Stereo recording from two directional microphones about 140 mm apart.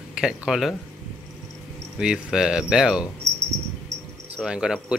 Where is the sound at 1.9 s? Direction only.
5° right (ahead or behind).